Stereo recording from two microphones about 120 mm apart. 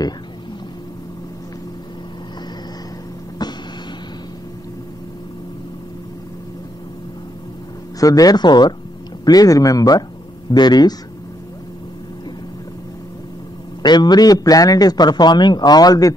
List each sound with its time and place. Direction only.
3.4 s a sound: 35° left (ahead or behind)
8.0 s a man's voice: 30° left (ahead or behind)
13.8 s a man's voice: 35° left (ahead or behind)